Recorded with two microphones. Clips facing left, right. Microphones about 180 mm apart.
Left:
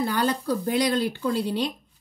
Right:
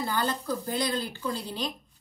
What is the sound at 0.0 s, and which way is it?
A woman's voice, 70° left (ahead or behind).